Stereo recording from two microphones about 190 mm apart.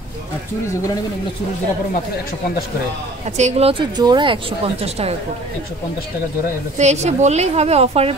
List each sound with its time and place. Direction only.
3.3 s speech: 35° right (ahead or behind)
6.8 s a woman's voice: 35° right (ahead or behind)